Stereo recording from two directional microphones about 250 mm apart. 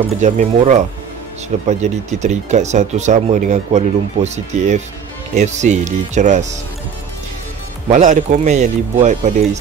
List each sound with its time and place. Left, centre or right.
0.2 s speech: right
7.9 s speech: right